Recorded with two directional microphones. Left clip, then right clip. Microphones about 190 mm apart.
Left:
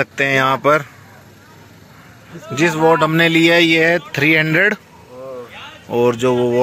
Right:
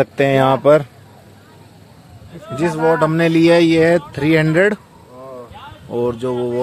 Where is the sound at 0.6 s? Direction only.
15° right (ahead or behind).